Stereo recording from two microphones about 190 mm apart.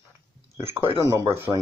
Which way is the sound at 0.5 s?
15° right (ahead or behind).